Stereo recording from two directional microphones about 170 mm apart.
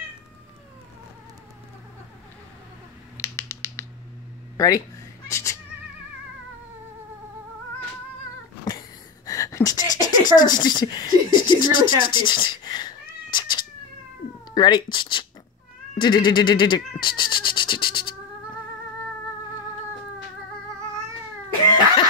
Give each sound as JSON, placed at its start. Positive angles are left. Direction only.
{"t": 3.2, "sound": "finger snapping", "side_deg": 15}
{"t": 4.6, "sound": "speech", "side_deg": 20}
{"t": 5.3, "sound": "music", "side_deg": 20}
{"t": 8.6, "sound": "a sound", "side_deg": 20}
{"t": 14.5, "sound": "speech", "side_deg": 25}